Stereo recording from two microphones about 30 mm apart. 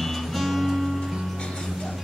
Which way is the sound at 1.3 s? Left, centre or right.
Left.